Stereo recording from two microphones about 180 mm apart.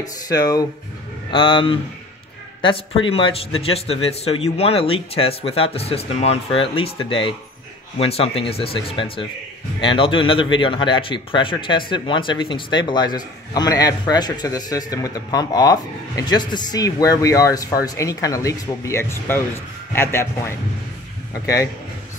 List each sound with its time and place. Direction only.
0.0 s a man's voice: 20° left (ahead or behind)